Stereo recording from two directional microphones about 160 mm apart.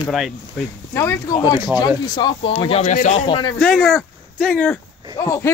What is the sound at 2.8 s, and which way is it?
Speech, 50° left (ahead or behind).